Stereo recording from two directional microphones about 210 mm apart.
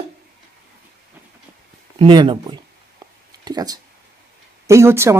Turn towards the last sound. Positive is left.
turn(degrees=-10)  # may be behind; listen again after turning